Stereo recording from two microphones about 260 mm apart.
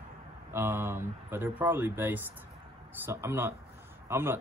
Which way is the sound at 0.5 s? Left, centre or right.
Centre.